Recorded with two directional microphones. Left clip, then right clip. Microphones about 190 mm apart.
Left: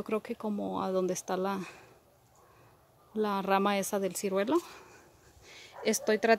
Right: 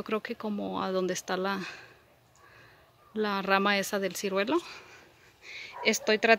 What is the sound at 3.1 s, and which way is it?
Speech, 5° left (ahead or behind).